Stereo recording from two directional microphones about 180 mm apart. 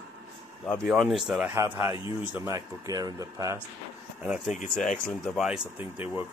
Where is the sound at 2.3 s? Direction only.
15° right (ahead or behind).